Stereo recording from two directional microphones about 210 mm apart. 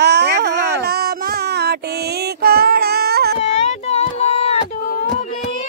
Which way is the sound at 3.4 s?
30° left (ahead or behind).